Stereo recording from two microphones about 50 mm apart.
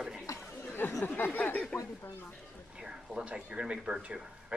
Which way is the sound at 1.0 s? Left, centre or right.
Left.